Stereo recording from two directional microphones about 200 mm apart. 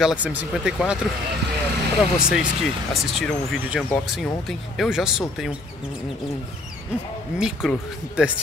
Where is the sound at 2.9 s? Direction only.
Centre (ahead or behind).